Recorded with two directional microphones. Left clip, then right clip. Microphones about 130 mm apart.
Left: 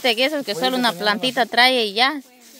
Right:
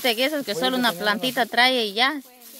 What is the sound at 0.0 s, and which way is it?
Speech, 30° left (ahead or behind).